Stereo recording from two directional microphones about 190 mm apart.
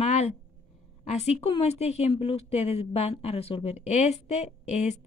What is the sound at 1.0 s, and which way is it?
Speech, 35° left (ahead or behind).